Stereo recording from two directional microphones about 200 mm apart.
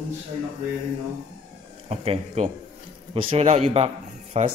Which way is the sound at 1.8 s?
30° right (ahead or behind).